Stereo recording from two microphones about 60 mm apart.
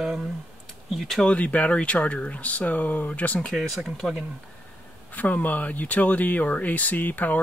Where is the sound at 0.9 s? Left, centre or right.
Centre.